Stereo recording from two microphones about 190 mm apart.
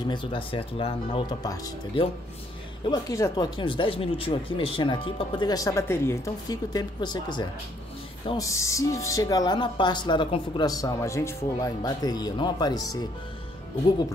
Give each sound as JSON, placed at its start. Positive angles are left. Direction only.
{"t": 0.0, "sound": "speech", "side_deg": 25}